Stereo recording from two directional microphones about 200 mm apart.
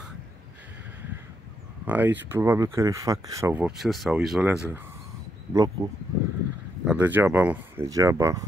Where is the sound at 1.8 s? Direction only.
10° right (ahead or behind).